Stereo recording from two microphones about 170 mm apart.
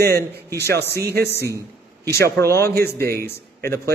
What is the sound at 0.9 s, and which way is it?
Speech, 70° right (ahead or behind).